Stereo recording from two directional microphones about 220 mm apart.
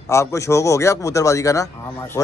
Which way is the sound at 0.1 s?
15° left (ahead or behind).